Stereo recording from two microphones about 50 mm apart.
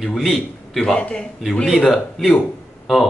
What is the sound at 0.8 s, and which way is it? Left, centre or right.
Speech, centre.